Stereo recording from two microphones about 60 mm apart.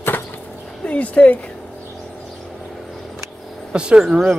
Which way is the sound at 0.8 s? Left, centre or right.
Left.